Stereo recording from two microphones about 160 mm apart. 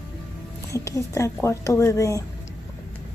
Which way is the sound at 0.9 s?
20° left (ahead or behind).